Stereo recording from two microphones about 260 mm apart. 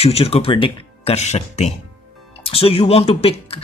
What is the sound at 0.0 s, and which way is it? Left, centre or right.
Speech, left.